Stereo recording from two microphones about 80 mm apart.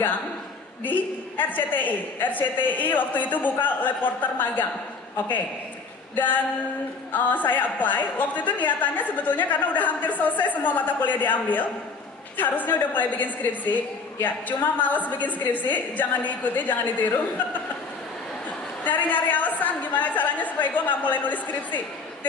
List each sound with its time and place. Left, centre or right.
0.8 s a man's voice: left
6.1 s a man's voice: left
18.9 s a man's voice: centre